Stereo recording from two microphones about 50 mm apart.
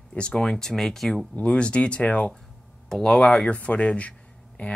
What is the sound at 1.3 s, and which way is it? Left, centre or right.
Speech, left.